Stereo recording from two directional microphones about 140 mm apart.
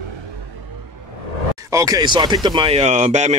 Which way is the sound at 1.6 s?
25° right (ahead or behind).